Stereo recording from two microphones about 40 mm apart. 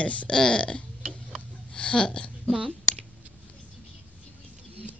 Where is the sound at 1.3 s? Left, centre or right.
Left.